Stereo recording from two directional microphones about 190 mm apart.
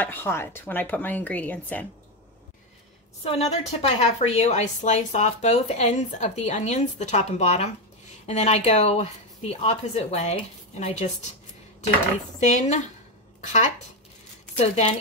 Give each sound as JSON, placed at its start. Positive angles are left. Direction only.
{"t": 0.0, "sound": "speech", "side_deg": 10}
{"t": 3.3, "sound": "a woman's voice", "side_deg": 35}
{"t": 12.4, "sound": "a woman's voice", "side_deg": 40}